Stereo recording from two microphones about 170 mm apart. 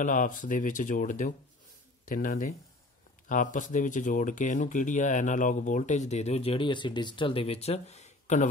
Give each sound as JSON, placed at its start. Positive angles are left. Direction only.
{"t": 0.0, "sound": "speech", "side_deg": 50}